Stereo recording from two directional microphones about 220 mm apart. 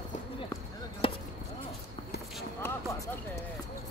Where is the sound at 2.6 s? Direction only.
10° left (ahead or behind).